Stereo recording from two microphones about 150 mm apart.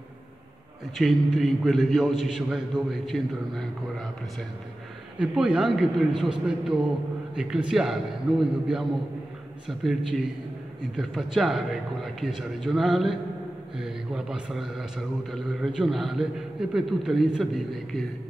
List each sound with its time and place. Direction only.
0.9 s a man's voice: centre (ahead or behind)
5.2 s a man's voice: 5° right (ahead or behind)